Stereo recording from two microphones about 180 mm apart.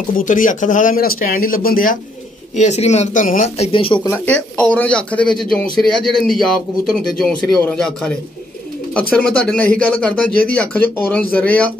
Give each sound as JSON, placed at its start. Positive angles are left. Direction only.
{"t": 0.2, "sound": "speech", "side_deg": 45}
{"t": 2.5, "sound": "speech", "side_deg": 40}
{"t": 4.3, "sound": "a man's voice", "side_deg": 10}
{"t": 9.1, "sound": "a man's voice", "side_deg": 5}